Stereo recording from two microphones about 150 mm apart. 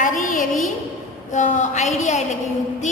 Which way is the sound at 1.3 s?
55° left (ahead or behind).